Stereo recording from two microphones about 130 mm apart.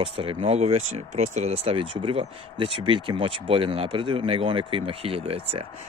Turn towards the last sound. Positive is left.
turn(degrees=-45)  # may be behind; listen again after turning